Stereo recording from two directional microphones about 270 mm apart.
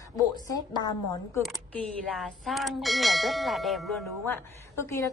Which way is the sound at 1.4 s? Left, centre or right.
Centre.